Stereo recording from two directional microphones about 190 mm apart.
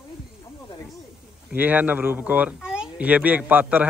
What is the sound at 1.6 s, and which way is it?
Speech, 10° right (ahead or behind).